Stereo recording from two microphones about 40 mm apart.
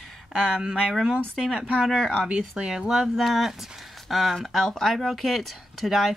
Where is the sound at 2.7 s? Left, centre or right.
Centre.